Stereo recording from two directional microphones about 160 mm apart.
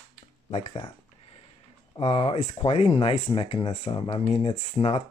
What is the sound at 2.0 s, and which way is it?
Speech, 35° left (ahead or behind).